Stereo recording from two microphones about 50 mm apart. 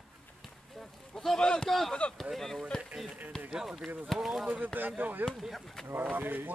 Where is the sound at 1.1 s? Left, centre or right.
Centre.